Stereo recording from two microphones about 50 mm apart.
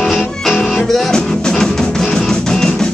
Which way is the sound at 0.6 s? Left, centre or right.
Centre.